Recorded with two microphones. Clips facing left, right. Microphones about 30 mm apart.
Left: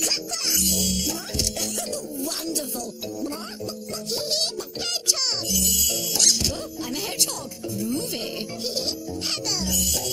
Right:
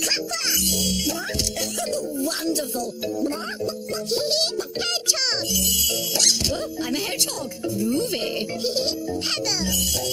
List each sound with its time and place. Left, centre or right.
0.6 s speech: centre
4.1 s speech: right
5.5 s speech: centre